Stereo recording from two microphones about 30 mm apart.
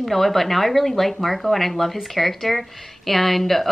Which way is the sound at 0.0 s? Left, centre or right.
Centre.